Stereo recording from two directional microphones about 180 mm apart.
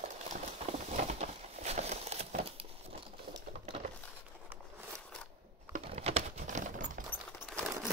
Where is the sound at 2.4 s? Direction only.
35° right (ahead or behind).